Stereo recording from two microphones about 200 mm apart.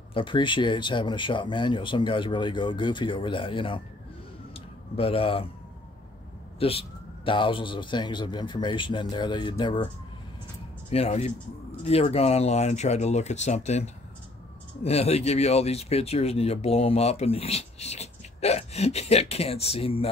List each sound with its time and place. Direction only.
0.1 s speech: 25° left (ahead or behind)
4.6 s a sound: 30° left (ahead or behind)
6.6 s speech: 30° left (ahead or behind)
10.9 s speech: 30° left (ahead or behind)